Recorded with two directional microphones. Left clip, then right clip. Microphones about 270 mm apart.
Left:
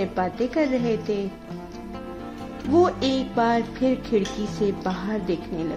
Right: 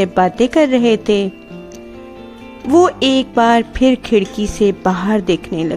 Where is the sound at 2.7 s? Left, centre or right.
Right.